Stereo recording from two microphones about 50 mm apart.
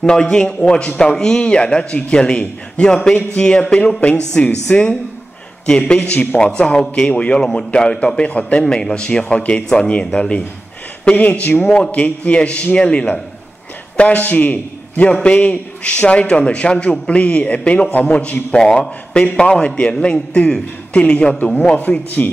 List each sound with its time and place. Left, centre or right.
0.0 s a man's voice: centre
11.1 s a man's voice: left
11.6 s speech: centre
11.9 s a man's voice: left